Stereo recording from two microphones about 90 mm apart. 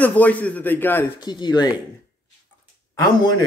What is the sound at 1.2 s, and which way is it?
Speech, 50° left (ahead or behind).